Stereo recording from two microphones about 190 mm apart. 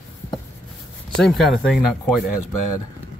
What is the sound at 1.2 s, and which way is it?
Speech, centre (ahead or behind).